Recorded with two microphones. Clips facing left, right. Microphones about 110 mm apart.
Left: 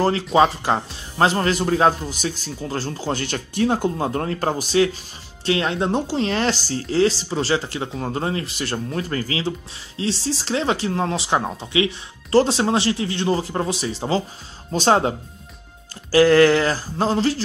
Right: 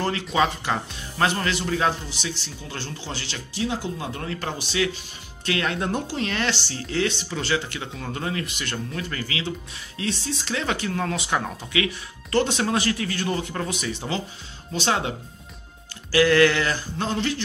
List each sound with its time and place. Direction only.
0.0 s speech: 35° left (ahead or behind)